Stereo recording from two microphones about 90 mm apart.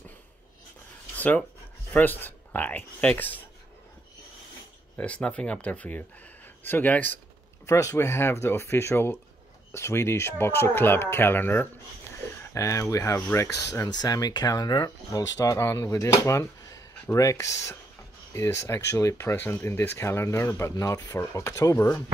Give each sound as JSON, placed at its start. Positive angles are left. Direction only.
{"t": 1.1, "sound": "a sound", "side_deg": 20}
{"t": 2.0, "sound": "speech", "side_deg": 20}
{"t": 4.9, "sound": "speech", "side_deg": 15}
{"t": 7.6, "sound": "speech", "side_deg": 35}
{"t": 12.5, "sound": "speech", "side_deg": 35}
{"t": 13.8, "sound": "speech", "side_deg": 45}